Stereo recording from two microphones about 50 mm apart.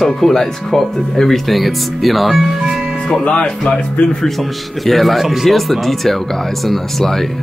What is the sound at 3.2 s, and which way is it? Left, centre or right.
Speech, centre.